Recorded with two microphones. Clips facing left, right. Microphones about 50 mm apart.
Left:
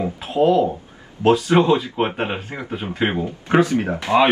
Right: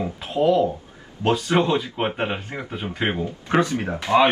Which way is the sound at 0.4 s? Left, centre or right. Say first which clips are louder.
Left 2 dB; left.